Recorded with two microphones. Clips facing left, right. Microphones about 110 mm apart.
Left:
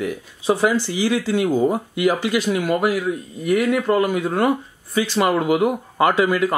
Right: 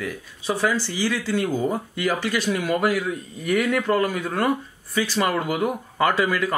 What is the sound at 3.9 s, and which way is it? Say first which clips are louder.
Speech: left 4 dB; 20° left (ahead or behind).